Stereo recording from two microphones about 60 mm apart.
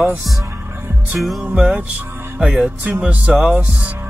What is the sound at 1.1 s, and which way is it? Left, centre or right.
Speech, centre.